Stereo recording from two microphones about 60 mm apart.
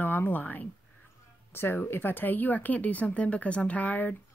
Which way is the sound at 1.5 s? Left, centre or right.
Left.